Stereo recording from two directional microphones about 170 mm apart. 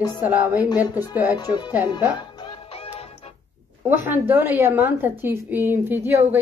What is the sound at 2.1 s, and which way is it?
Music, 25° left (ahead or behind).